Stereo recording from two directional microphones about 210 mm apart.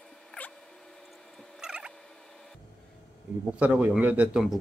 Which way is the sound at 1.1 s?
Centre (ahead or behind).